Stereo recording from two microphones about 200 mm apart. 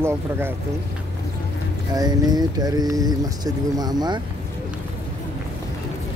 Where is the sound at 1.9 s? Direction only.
20° right (ahead or behind).